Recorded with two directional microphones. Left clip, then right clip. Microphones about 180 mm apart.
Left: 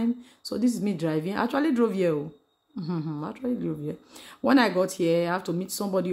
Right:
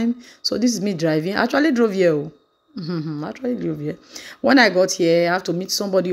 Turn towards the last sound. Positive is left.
turn(degrees=-10)  # may be behind; listen again after turning